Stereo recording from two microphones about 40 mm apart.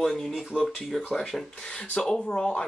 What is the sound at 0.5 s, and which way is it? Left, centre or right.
Speech, left.